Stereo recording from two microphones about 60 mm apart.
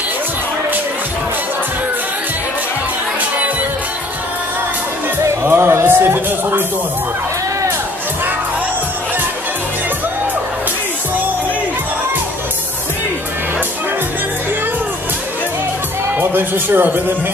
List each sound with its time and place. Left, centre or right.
5.5 s speech: right
16.2 s speech: right